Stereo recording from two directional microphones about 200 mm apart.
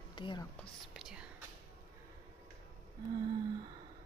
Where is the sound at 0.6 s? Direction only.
5° right (ahead or behind).